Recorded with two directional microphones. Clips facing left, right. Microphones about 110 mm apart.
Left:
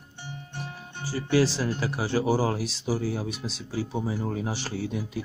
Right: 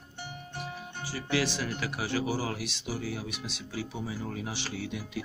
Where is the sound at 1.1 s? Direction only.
35° left (ahead or behind).